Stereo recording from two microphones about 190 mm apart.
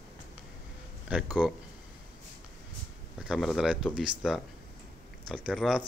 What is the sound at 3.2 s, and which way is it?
Speech, centre (ahead or behind).